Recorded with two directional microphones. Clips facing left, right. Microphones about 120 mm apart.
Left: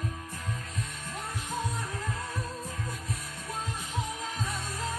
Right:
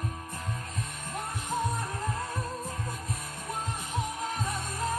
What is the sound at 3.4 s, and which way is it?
Music, 55° right (ahead or behind).